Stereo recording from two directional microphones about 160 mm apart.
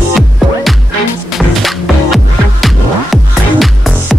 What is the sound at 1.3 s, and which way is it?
Music, centre (ahead or behind).